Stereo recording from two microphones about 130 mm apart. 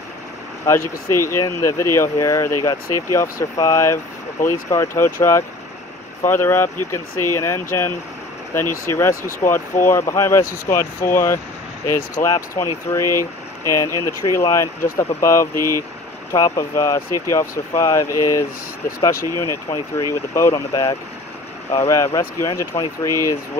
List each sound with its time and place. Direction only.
0.7 s speech: 20° left (ahead or behind)